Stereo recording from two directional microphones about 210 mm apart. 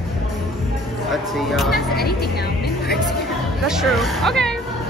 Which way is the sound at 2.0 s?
50° left (ahead or behind).